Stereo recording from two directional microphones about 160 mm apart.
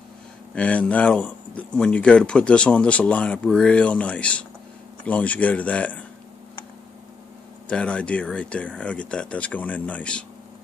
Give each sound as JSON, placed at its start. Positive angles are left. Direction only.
{"t": 0.6, "sound": "speech", "side_deg": 5}
{"t": 7.6, "sound": "speech", "side_deg": 5}